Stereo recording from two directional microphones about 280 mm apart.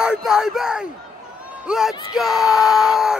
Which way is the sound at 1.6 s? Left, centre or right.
Centre.